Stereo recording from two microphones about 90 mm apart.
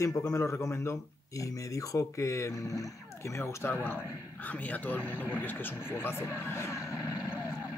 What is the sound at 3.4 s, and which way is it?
Speech, 25° left (ahead or behind).